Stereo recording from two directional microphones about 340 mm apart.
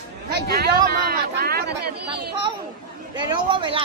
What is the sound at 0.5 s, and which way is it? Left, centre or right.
Speech, right.